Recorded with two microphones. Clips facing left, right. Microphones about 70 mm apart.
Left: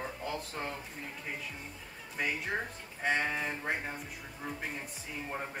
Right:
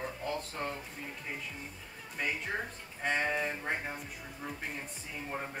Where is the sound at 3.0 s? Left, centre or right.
Centre.